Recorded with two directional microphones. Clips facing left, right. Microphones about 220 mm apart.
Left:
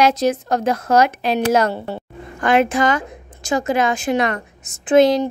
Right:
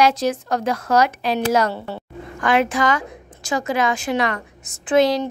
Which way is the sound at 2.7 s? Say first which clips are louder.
Left 2 dB; 50° left (ahead or behind).